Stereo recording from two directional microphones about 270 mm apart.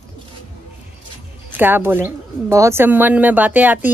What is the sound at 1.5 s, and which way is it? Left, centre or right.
Speech, centre.